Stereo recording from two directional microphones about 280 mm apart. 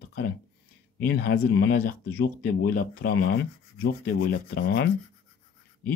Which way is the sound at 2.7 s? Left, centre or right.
Left.